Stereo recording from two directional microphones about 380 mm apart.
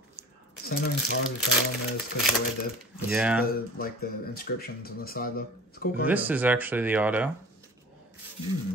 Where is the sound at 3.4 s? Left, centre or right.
Left.